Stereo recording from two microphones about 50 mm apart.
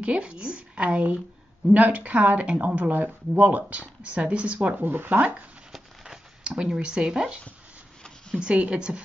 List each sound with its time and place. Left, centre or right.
0.0 s a woman's voice: right
4.8 s speech: right
6.4 s speech: centre
8.4 s a woman's voice: right